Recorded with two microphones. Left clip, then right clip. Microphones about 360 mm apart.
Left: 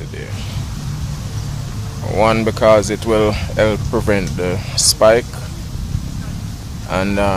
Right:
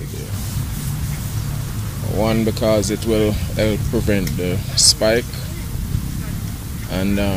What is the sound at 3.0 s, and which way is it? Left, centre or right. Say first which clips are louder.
Speech: left 4 dB; left.